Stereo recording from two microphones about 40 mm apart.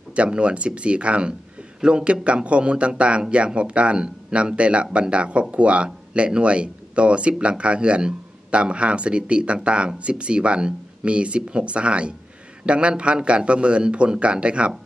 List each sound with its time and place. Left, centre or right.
0.1 s speech: right